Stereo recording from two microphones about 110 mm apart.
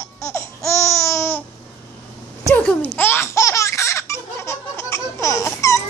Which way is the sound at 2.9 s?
20° left (ahead or behind).